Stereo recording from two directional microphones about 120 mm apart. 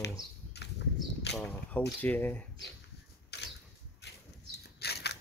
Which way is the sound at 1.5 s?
15° left (ahead or behind).